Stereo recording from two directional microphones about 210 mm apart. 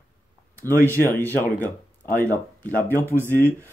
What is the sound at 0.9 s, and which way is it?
Speech, 10° left (ahead or behind).